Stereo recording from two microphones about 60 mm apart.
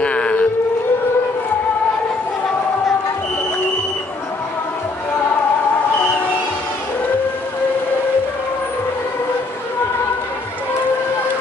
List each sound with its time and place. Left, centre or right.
0.0 s civil defense siren: centre